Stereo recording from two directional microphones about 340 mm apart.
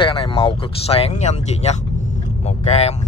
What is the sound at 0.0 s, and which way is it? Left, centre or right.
Speech, centre.